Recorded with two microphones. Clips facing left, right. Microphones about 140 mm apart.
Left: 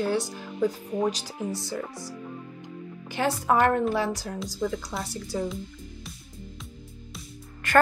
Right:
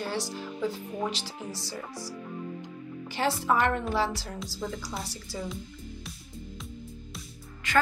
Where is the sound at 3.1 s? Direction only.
50° left (ahead or behind).